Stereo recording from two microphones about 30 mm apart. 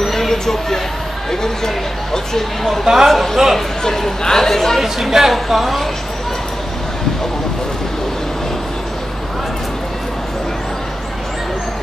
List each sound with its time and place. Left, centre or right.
0.0 s a sound: centre
1.3 s speech: centre
2.8 s a man's voice: centre
3.5 s speech: centre
4.7 s a woman's voice: centre